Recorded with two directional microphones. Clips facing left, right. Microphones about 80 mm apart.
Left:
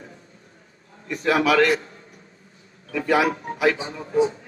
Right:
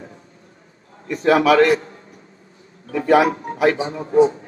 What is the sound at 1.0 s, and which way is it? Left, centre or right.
A man's voice, right.